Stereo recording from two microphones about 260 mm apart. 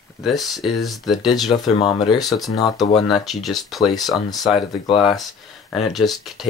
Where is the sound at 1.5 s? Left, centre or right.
Left.